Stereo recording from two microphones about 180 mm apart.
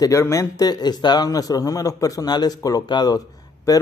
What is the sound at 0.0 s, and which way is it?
A man's voice, 15° left (ahead or behind).